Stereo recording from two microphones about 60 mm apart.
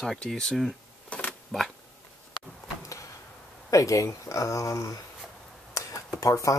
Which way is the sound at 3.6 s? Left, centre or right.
Left.